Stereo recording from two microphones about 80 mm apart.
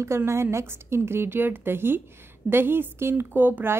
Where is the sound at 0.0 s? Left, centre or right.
Right.